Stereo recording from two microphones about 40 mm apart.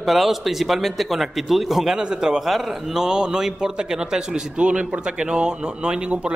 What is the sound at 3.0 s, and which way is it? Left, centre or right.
A man's voice, centre.